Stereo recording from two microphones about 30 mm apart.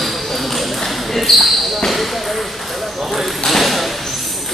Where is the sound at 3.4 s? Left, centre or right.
Centre.